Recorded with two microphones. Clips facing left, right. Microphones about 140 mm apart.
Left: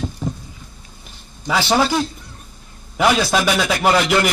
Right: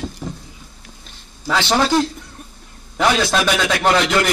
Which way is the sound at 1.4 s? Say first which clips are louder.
Even; 5° left (ahead or behind).